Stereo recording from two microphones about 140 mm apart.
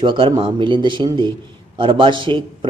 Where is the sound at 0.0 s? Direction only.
35° right (ahead or behind).